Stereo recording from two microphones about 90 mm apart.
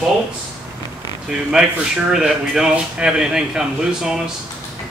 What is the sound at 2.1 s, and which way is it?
Speech, 5° right (ahead or behind).